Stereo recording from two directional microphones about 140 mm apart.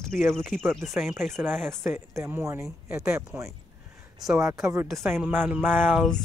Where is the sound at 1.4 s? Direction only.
15° right (ahead or behind).